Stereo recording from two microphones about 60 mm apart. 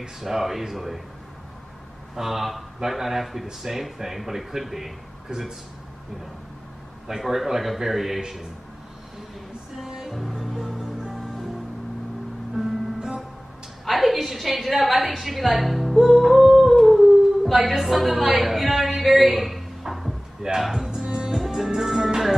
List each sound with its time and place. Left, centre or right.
0.0 s speech: centre
2.1 s speech: centre
7.1 s speech: centre
9.8 s music: centre
12.5 s music: centre
13.8 s a woman's voice: centre
17.5 s a sound: centre
21.5 s music: centre